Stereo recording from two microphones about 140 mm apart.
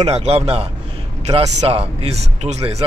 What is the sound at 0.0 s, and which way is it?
Speech, 50° right (ahead or behind).